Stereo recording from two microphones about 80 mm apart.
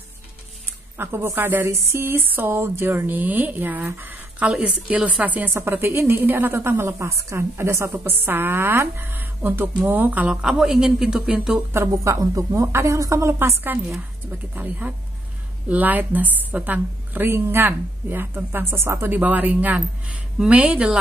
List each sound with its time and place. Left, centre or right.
0.9 s a woman's voice: right; by 11.6 s centre
11.7 s a woman's voice: right; by 21.0 s centre